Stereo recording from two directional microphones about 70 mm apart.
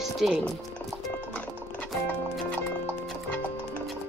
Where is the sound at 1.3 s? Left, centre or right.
Left.